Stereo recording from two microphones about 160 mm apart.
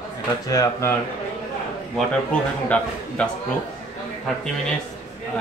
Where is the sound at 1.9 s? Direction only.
5° left (ahead or behind).